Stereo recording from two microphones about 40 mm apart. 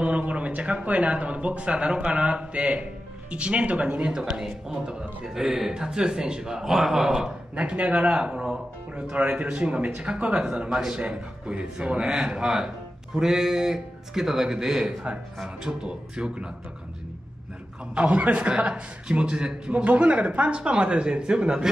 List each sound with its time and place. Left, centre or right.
0.0 s a sound: right
0.5 s speech: right
4.4 s speech: centre
7.5 s speech: right
9.1 s speech: right; by 11.0 s centre
11.0 s speech: right
17.9 s a man's voice: right
18.5 s speech: right
19.7 s speech: right; by 21.6 s centre